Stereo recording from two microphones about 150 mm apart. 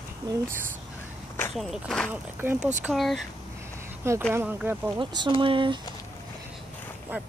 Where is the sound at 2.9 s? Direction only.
Centre (ahead or behind).